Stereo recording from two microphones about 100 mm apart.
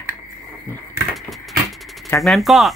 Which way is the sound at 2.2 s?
Centre (ahead or behind).